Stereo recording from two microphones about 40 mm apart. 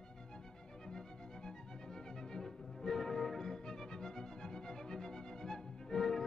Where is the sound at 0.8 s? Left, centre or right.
Centre.